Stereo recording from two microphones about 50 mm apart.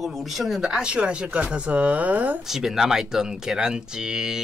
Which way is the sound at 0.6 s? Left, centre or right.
Centre.